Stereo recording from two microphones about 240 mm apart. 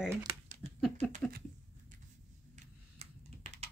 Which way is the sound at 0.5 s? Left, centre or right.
Right.